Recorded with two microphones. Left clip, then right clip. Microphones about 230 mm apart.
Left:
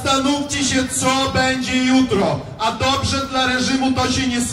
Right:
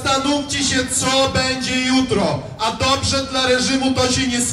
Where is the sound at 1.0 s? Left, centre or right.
Right.